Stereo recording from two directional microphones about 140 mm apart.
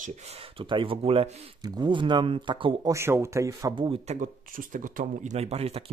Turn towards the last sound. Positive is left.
turn(degrees=-45)  # may be behind; listen again after turning